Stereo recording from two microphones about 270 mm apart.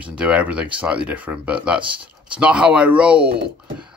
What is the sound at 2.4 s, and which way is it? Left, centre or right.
Speech, centre.